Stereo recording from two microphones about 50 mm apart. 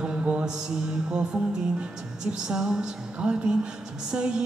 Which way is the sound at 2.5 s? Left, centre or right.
Centre.